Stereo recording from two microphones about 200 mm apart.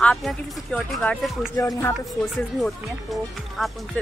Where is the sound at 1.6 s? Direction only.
15° left (ahead or behind).